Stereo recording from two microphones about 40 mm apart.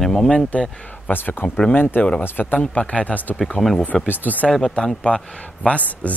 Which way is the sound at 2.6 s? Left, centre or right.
Left.